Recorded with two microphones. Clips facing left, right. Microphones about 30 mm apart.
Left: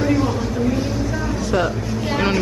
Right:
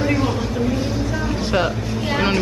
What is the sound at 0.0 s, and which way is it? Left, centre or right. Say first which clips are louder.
Vehicle: left 1 dB; centre.